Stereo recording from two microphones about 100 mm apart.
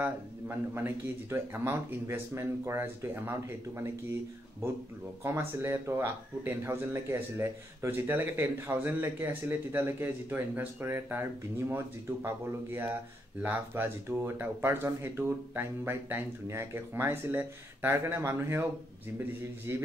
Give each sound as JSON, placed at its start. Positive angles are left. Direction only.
{"t": 0.7, "sound": "speech", "side_deg": -25}